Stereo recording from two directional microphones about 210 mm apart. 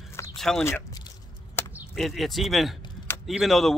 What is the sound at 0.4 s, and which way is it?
Speech, centre (ahead or behind).